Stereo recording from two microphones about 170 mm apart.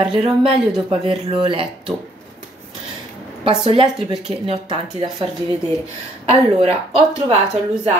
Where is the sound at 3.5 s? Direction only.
35° right (ahead or behind).